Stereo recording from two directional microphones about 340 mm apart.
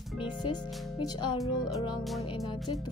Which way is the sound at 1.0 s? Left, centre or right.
Centre.